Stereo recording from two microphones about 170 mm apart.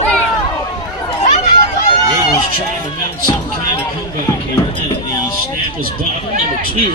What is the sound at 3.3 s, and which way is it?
Speech, 25° left (ahead or behind).